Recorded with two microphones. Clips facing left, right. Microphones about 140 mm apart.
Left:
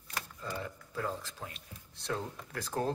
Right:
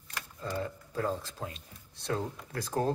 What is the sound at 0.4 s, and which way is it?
Speech, 35° right (ahead or behind).